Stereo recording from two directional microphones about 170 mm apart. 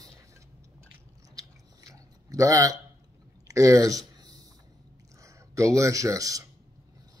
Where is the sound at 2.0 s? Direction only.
20° right (ahead or behind).